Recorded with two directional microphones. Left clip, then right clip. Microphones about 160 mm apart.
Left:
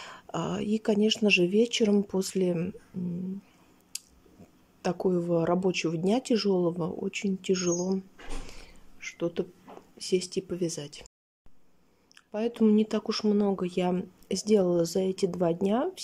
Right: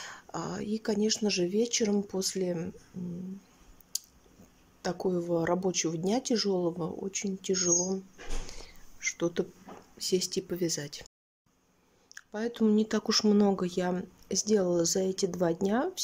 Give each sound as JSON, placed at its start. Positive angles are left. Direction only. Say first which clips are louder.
{"t": 0.0, "sound": "speech", "louder": "left 4 dB", "side_deg": 15}
{"t": 3.9, "sound": "a sound", "louder": "right 4 dB", "side_deg": 15}
{"t": 4.8, "sound": "speech", "louder": "left 3 dB", "side_deg": 10}
{"t": 8.5, "sound": "a sound", "louder": "right 1 dB", "side_deg": 10}
{"t": 9.9, "sound": "speech", "louder": "left 1 dB", "side_deg": 10}
{"t": 12.1, "sound": "speech", "louder": "left 4 dB", "side_deg": 10}